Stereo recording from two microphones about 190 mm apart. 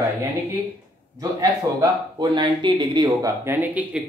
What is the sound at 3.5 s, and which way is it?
Speech, 10° right (ahead or behind).